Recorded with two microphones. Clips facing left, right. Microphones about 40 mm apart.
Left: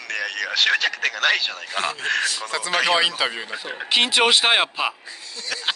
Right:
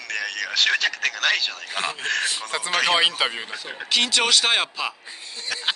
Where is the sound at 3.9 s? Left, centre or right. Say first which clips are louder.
Left 3 dB; left.